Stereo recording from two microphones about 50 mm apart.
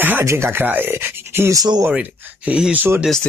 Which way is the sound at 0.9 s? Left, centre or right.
Right.